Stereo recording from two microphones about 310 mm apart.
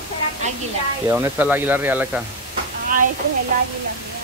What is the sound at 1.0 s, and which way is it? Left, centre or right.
Speech, centre.